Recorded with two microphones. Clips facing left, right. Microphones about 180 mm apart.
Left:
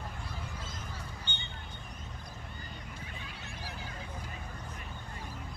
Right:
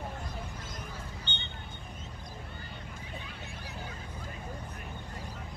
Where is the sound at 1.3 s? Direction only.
10° left (ahead or behind).